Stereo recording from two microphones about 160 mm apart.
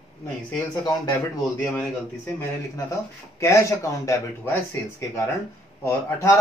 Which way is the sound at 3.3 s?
20° left (ahead or behind).